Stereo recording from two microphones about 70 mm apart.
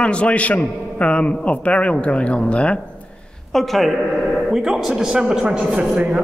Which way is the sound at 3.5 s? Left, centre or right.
Centre.